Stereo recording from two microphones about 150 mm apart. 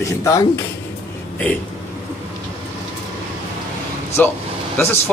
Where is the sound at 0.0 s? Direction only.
20° left (ahead or behind).